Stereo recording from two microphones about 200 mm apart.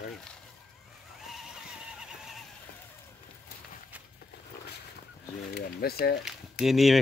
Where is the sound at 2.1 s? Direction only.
Centre (ahead or behind).